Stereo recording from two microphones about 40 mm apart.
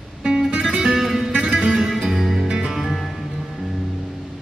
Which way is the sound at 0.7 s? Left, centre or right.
Centre.